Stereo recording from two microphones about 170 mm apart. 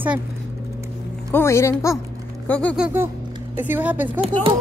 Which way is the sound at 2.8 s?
10° right (ahead or behind).